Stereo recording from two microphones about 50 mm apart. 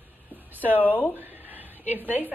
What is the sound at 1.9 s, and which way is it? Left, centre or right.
Speech, right.